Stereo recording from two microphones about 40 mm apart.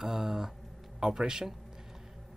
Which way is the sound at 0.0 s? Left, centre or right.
Centre.